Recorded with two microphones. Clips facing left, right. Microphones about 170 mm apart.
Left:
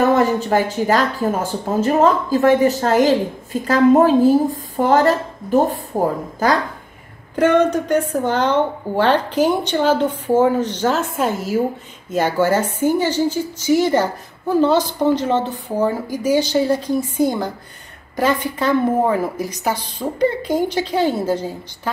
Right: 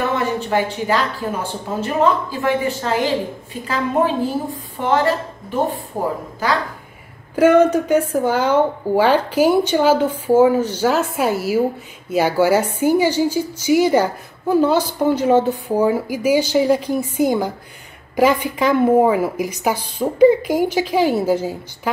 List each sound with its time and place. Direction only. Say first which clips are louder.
0.1 s speech: left 4 dB; 40° left (ahead or behind)
7.3 s a woman's voice: right 2 dB; 10° right (ahead or behind)